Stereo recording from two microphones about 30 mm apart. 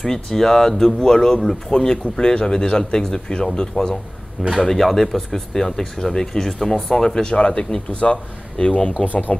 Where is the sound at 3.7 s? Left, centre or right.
Left.